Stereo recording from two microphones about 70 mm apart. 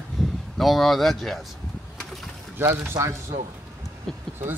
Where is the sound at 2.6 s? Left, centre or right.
Right.